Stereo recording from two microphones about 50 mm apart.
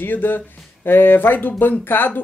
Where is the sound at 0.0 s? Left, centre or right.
Left.